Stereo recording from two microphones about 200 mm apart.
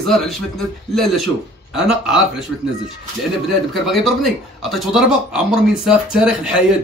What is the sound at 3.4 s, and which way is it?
Speech, centre (ahead or behind).